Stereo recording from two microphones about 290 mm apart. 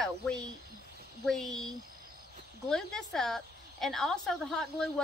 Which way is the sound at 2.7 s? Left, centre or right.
Centre.